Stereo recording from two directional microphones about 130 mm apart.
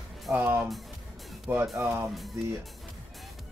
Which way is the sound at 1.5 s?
20° right (ahead or behind).